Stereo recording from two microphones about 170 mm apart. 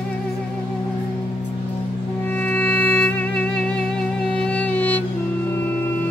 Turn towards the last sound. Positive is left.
turn(degrees=10)  # may be behind; listen again after turning